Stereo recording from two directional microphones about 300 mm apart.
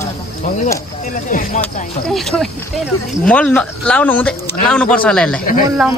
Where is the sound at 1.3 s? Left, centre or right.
Left.